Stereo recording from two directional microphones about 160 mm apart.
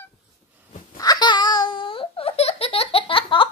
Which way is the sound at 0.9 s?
25° left (ahead or behind).